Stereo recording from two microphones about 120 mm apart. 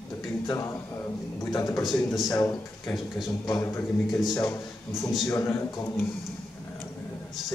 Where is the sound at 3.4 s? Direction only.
30° left (ahead or behind).